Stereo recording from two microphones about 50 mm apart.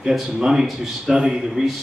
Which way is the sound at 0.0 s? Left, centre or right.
Centre.